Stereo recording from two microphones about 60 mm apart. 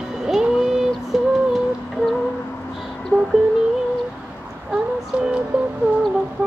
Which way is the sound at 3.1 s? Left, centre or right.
Right.